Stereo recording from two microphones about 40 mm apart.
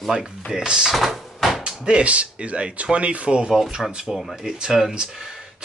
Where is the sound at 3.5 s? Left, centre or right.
Centre.